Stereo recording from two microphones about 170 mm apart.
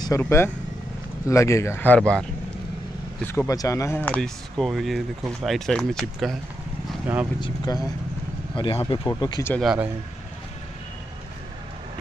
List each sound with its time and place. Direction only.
0.2 s speech: 15° left (ahead or behind)
3.3 s speech: 15° left (ahead or behind); by 6.3 s centre (ahead or behind)
7.3 s speech: 25° left (ahead or behind)
9.6 s speech: 5° right (ahead or behind)